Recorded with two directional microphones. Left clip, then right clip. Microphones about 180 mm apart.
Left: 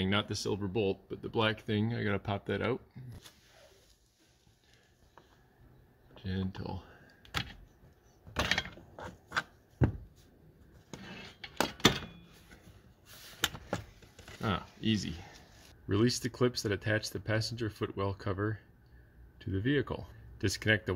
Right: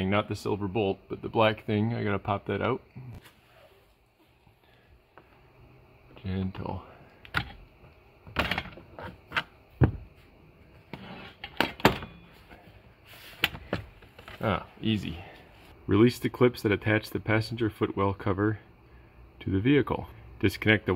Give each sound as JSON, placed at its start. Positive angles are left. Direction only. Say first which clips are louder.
{"t": 0.0, "sound": "speech", "louder": "right 4 dB", "side_deg": 0}
{"t": 6.1, "sound": "computer keyboard", "louder": "right 4 dB", "side_deg": -5}
{"t": 8.4, "sound": "a sound", "louder": "right 2 dB", "side_deg": -5}
{"t": 13.4, "sound": "a sound", "louder": "right 5 dB", "side_deg": 0}
{"t": 14.4, "sound": "speech", "louder": "right 5 dB", "side_deg": 0}
{"t": 15.9, "sound": "speech", "louder": "right 7 dB", "side_deg": -15}